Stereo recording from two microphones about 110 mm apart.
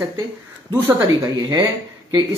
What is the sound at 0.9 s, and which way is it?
Speech, 40° right (ahead or behind).